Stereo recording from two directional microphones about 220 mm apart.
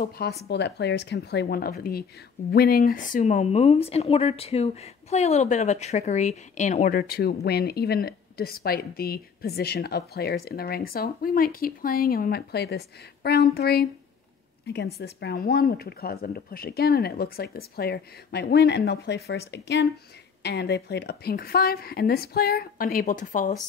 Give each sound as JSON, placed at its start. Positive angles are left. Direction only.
{"t": 0.0, "sound": "speech", "side_deg": 45}
{"t": 15.0, "sound": "speech", "side_deg": 50}